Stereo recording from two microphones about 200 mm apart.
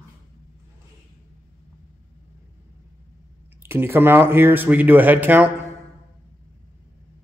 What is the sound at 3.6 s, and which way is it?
Speech, 10° right (ahead or behind).